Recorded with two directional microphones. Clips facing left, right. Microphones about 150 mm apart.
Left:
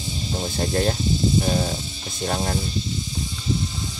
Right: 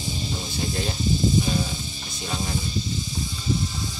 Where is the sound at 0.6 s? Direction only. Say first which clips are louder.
Left 7 dB; 55° left (ahead or behind).